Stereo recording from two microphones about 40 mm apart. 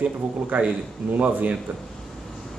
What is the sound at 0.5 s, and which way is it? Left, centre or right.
Speech, right.